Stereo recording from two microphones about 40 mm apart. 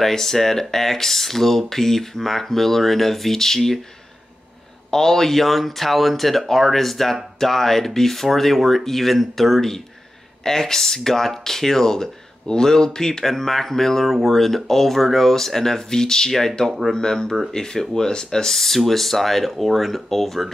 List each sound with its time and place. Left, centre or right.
0.0 s speech: centre
4.9 s speech: centre